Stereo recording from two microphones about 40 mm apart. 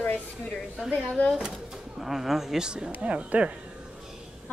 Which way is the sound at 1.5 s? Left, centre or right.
Centre.